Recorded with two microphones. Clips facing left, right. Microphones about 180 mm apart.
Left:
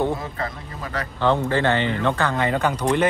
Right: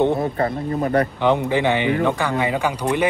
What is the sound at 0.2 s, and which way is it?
Speech, 35° right (ahead or behind).